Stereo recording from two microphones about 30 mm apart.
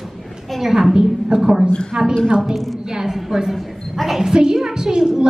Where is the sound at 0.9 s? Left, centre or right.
Right.